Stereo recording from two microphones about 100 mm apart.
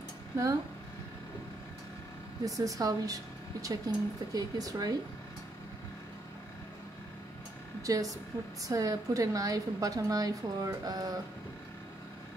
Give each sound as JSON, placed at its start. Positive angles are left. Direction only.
{"t": 2.4, "sound": "a woman's voice", "side_deg": -35}
{"t": 7.8, "sound": "a woman's voice", "side_deg": -35}